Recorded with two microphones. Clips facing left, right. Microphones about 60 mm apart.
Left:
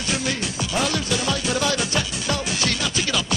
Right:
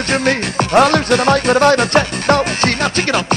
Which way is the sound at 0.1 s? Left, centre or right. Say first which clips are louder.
Right 10 dB; right.